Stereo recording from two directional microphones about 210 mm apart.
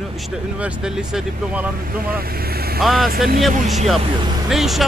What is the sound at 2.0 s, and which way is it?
Speech, 45° right (ahead or behind).